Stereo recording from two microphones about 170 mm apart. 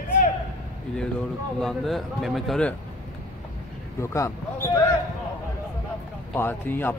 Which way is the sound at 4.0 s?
15° left (ahead or behind).